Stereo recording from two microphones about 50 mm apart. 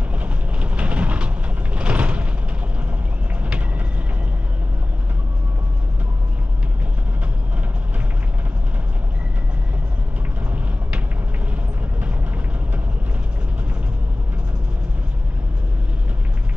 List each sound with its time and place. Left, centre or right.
0.1 s vehicle: right